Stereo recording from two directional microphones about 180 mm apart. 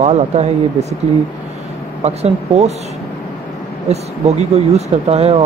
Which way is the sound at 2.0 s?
35° right (ahead or behind).